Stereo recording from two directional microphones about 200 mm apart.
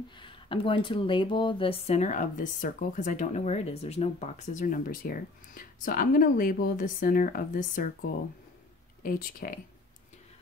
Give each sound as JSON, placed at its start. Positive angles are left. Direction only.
{"t": 0.1, "sound": "speech", "side_deg": 25}